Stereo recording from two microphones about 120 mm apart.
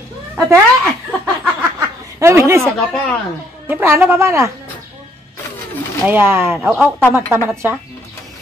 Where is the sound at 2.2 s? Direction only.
25° right (ahead or behind).